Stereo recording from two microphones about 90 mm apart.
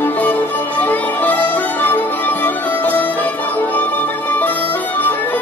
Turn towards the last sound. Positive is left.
turn(degrees=20)  # may be behind; listen again after turning